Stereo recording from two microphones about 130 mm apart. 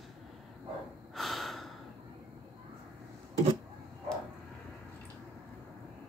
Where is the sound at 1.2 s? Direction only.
Centre (ahead or behind).